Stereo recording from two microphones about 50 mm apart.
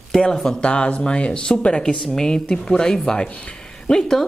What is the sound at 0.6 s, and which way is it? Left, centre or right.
Speech, left.